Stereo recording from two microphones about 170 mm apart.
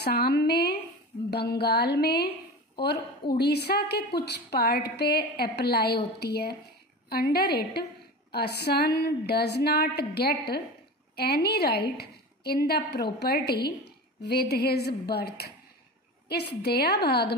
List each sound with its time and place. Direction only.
0.0 s a woman's voice: 70° left (ahead or behind)